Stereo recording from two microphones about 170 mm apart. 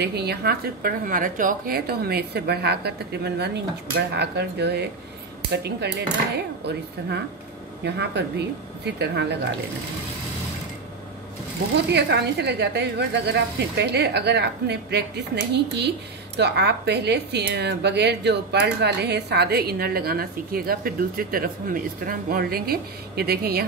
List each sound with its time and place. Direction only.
0.0 s speech: 70° right (ahead or behind)
7.8 s speech: 85° right
11.7 s speech: 75° right (ahead or behind)